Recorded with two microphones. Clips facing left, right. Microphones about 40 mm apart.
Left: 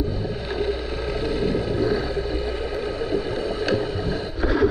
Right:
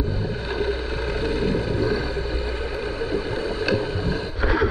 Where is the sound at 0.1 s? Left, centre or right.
Right.